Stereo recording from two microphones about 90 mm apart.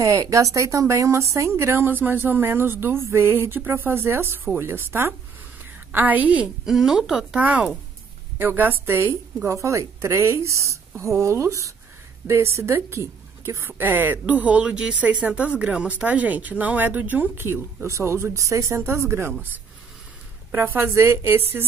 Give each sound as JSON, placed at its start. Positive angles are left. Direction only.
{"t": 0.0, "sound": "a woman's voice", "side_deg": -35}
{"t": 20.5, "sound": "a woman's voice", "side_deg": -25}